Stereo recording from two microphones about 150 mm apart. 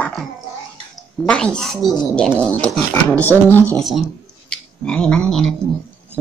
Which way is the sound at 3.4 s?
15° left (ahead or behind).